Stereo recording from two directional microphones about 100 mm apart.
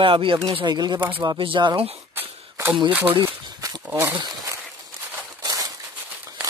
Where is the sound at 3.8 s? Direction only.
25° right (ahead or behind).